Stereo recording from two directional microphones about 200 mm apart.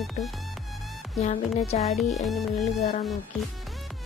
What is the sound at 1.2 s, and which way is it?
Speech, 35° left (ahead or behind).